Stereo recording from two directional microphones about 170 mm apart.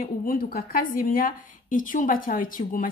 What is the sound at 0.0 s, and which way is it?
A woman's voice, 55° left (ahead or behind).